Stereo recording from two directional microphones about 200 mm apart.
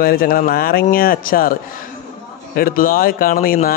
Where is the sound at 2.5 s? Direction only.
45° left (ahead or behind).